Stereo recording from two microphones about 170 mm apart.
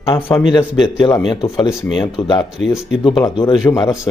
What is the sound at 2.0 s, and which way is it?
Speech, 25° left (ahead or behind).